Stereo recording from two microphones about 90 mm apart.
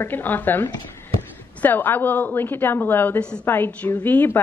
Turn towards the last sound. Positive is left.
turn(degrees=20)  # may be behind; listen again after turning